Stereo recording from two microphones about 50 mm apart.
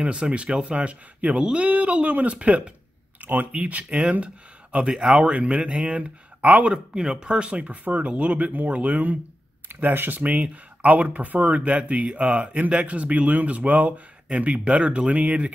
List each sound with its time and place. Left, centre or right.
0.0 s speech: right
3.2 s speech: right
4.7 s speech: centre
6.7 s speech: centre; by 10.2 s right
10.2 s speech: right